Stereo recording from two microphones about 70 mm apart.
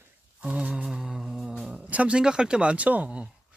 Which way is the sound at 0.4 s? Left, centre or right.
Centre.